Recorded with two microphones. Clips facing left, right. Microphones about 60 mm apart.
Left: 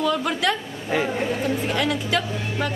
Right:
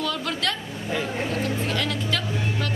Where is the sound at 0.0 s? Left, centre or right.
Centre.